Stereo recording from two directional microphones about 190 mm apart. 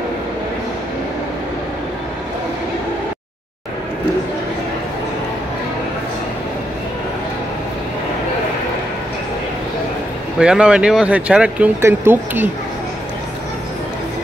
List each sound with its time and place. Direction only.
10.4 s speech: 5° right (ahead or behind)